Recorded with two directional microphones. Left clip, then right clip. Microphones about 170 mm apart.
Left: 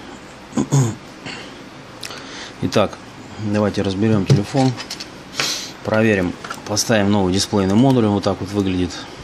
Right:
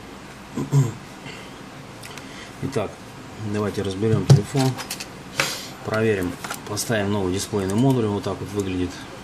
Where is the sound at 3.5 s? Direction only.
45° left (ahead or behind).